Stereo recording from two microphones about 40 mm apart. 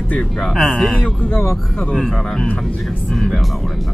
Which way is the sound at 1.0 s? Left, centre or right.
Left.